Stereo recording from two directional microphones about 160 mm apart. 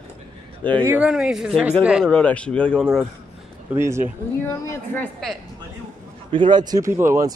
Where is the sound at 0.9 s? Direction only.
5° right (ahead or behind).